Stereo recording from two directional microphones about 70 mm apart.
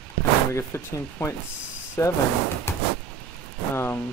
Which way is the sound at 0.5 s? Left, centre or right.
Left.